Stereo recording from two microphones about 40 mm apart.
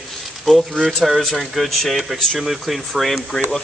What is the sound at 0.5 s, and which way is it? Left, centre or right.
Speech, centre.